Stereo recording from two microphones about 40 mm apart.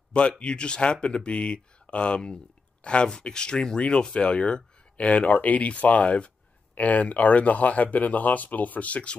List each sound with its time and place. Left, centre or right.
0.4 s speech: left